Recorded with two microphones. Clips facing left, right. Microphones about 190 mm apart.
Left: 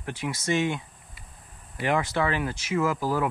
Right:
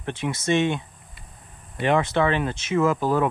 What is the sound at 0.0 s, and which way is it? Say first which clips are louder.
Speech: right 4 dB; 25° right (ahead or behind).